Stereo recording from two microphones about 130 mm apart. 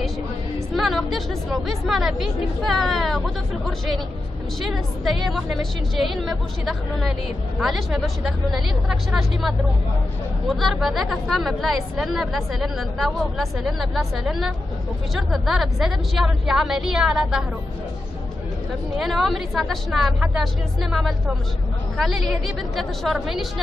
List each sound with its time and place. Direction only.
0.7 s a woman's voice: centre (ahead or behind)
18.9 s a woman's voice: centre (ahead or behind)
21.9 s a woman's voice: centre (ahead or behind)